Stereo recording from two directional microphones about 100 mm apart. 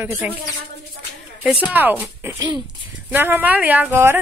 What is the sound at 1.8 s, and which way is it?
Speech, 15° right (ahead or behind).